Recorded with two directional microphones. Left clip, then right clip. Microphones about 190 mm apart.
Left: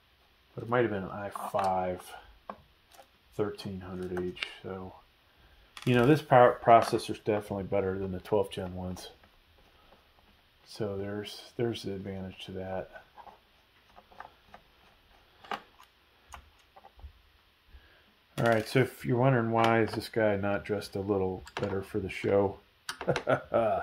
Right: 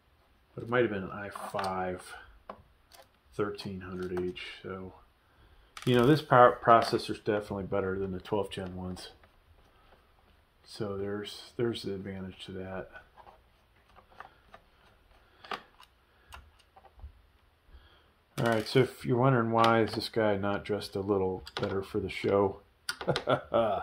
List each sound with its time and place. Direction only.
0.6 s speech: 25° left (ahead or behind)
3.3 s speech: 30° left (ahead or behind)
5.9 s speech: 30° left (ahead or behind)
6.4 s speech: 20° left (ahead or behind)
10.6 s speech: 30° left (ahead or behind)
18.4 s speech: 35° left (ahead or behind)